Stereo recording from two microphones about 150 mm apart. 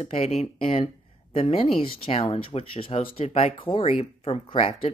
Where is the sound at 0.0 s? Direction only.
45° left (ahead or behind).